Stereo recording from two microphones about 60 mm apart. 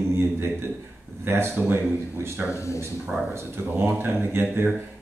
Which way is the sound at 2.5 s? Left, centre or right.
Left.